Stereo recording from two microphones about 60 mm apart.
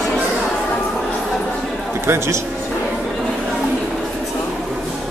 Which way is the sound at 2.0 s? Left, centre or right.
Right.